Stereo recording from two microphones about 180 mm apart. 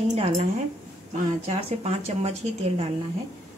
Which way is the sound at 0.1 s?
35° right (ahead or behind).